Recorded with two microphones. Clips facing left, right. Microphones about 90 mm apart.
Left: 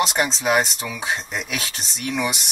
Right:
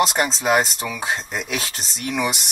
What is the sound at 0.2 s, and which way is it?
Speech, centre (ahead or behind).